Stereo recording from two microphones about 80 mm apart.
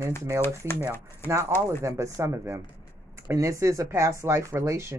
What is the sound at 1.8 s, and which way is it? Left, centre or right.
Speech, right.